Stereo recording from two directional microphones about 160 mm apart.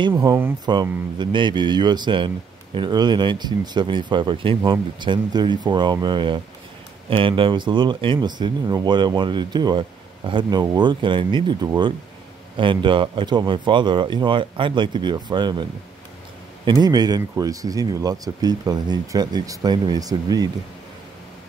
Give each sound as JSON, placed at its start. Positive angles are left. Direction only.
{"t": 0.2, "sound": "speech", "side_deg": -15}
{"t": 1.1, "sound": "a man's voice", "side_deg": -30}